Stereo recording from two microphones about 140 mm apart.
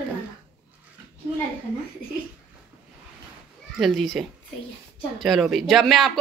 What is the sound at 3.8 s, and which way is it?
Speech, centre (ahead or behind).